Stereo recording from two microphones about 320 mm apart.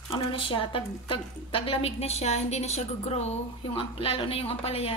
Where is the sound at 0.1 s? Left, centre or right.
Centre.